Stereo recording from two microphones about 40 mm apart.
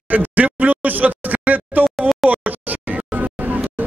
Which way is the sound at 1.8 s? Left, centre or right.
Centre.